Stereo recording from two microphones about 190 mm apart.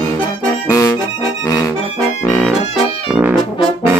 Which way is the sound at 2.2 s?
15° left (ahead or behind).